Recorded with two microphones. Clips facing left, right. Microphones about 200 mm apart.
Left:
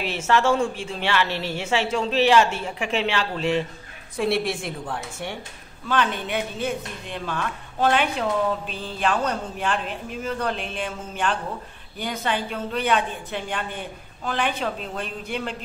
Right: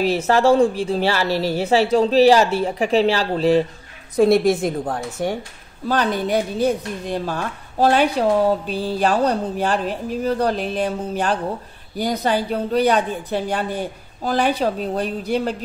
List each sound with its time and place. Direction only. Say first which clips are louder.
0.0 s speech: right 6 dB; 35° right (ahead or behind)